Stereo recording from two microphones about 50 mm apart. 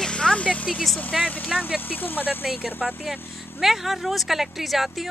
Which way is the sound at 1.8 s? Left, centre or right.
Left.